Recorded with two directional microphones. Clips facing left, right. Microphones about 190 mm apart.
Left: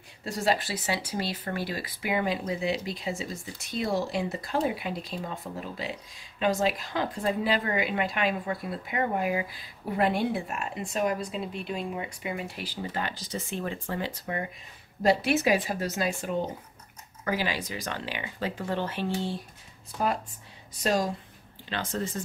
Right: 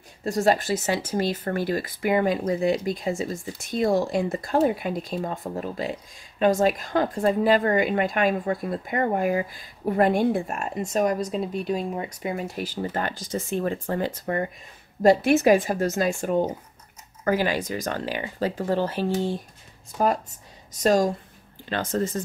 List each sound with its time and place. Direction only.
0.2 s speech: 45° right (ahead or behind)
20.7 s speech: 45° right (ahead or behind)